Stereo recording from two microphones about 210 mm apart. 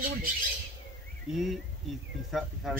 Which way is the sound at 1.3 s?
Centre (ahead or behind).